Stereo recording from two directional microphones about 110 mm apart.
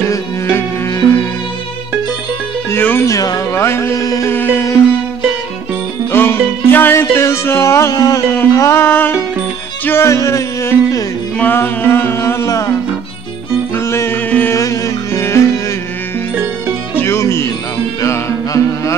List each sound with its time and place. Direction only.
0.1 s music: 25° left (ahead or behind)
2.7 s speech: 20° left (ahead or behind)
3.1 s speech: 30° left (ahead or behind)
4.3 s music: 20° left (ahead or behind)
6.1 s music: 20° left (ahead or behind)
8.3 s speech: 25° left (ahead or behind)
9.8 s music: 25° left (ahead or behind)
13.7 s mantra: 25° left (ahead or behind)
14.6 s music: 25° left (ahead or behind)
16.9 s music: 20° left (ahead or behind)